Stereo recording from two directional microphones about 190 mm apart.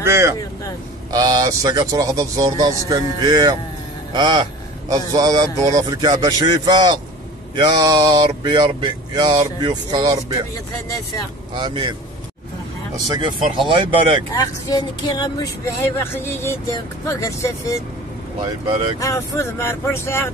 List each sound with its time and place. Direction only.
0.0 s speech: 15° right (ahead or behind)
11.5 s speech: 25° right (ahead or behind)
12.9 s speech: 20° right (ahead or behind)
14.4 s speech: 20° left (ahead or behind)
18.9 s speech: 15° left (ahead or behind)